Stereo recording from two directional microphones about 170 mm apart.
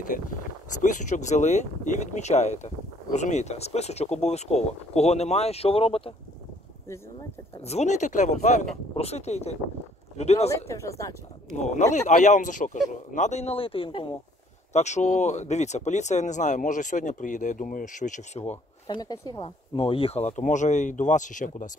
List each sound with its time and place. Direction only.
0.8 s speech: 50° left (ahead or behind)
7.6 s speech: 40° left (ahead or behind)
10.5 s speech: 15° left (ahead or behind)
11.5 s speech: 45° left (ahead or behind)
14.7 s speech: 45° left (ahead or behind)
18.9 s speech: 25° left (ahead or behind); by 21.7 s 50° left (ahead or behind)